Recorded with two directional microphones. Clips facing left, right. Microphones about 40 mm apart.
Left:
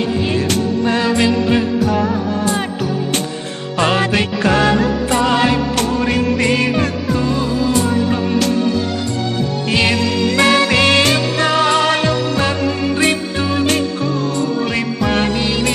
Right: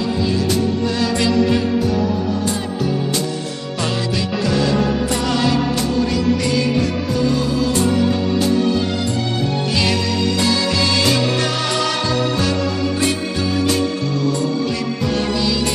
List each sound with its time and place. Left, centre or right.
0.8 s music: left
3.7 s music: left
5.1 s music: left
5.8 s music: left
9.7 s music: left
10.3 s music: left
11.3 s music: left
14.7 s music: left